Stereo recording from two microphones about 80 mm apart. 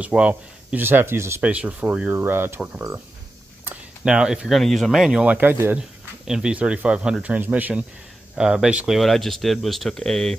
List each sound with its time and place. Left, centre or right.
0.0 s speech: centre; by 1.4 s right
1.4 s speech: centre
4.0 s speech: centre
5.2 s speech: right
5.8 s speech: centre
8.4 s speech: centre
8.9 s speech: centre